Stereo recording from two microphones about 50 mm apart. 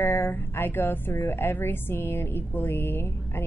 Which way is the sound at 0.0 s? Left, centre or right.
Left.